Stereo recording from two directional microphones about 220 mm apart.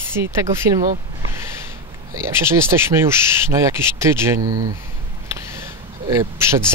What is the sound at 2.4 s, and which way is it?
Speech, 10° right (ahead or behind).